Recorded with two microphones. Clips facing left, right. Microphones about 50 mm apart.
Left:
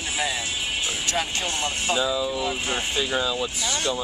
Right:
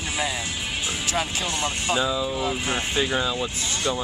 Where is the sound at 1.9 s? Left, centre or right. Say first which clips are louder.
Even; centre.